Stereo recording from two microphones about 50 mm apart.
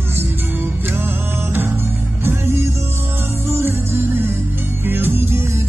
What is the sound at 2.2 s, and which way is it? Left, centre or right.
Music, right.